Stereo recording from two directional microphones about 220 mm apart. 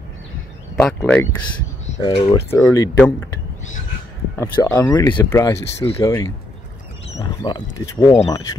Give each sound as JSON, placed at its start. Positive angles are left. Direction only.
{"t": 0.7, "sound": "speech", "side_deg": 5}
{"t": 2.0, "sound": "speech", "side_deg": 25}
{"t": 2.3, "sound": "speech", "side_deg": 10}
{"t": 4.4, "sound": "speech", "side_deg": 10}